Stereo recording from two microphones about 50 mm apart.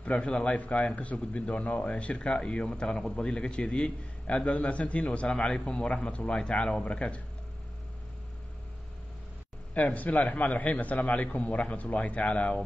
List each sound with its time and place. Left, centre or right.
0.0 s speech: left
5.3 s speech: centre
9.8 s speech: left